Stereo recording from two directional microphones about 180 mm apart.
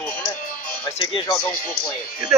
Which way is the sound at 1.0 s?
25° left (ahead or behind).